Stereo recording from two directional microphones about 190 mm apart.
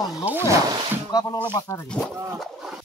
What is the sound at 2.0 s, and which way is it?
Speech, 5° left (ahead or behind).